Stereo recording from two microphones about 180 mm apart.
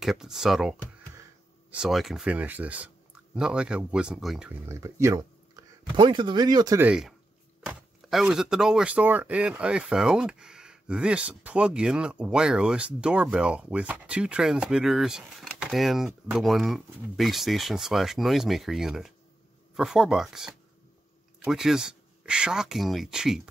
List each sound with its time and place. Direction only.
0.0 s speech: centre (ahead or behind)
4.6 s speech: 15° right (ahead or behind)
5.6 s a sound: 20° right (ahead or behind)
5.9 s speech: 25° right (ahead or behind)
6.8 s speech: 5° right (ahead or behind)